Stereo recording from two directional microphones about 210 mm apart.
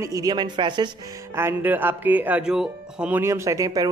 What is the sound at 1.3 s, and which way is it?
Speech, 10° right (ahead or behind).